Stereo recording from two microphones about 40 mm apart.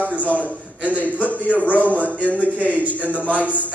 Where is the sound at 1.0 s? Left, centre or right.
Left.